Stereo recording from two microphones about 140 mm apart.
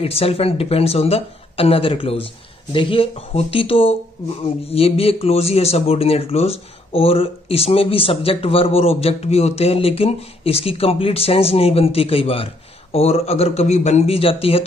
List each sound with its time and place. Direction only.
0.0 s speech: 45° left (ahead or behind)